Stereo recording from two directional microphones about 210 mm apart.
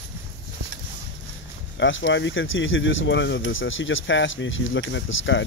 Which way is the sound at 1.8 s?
65° left (ahead or behind).